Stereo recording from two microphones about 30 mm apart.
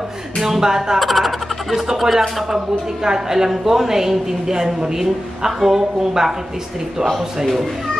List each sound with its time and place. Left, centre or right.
0.4 s a woman's voice: centre
0.9 s a woman's voice: centre